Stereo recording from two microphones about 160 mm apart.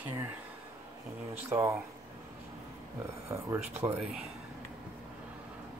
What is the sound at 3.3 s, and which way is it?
Speech, 15° right (ahead or behind).